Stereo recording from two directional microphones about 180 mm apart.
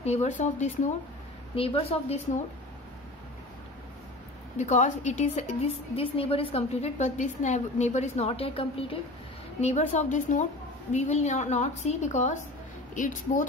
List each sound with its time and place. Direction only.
0.0 s a woman's voice: 40° left (ahead or behind)
4.6 s a woman's voice: 40° left (ahead or behind)